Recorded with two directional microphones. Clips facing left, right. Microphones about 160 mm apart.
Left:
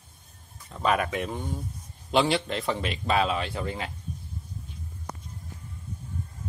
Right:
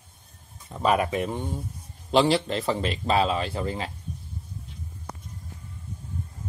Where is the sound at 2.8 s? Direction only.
30° right (ahead or behind).